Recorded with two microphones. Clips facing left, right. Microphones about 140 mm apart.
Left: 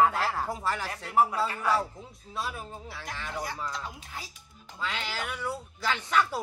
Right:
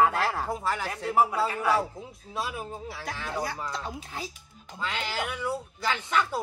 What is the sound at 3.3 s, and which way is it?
Speech, 35° right (ahead or behind).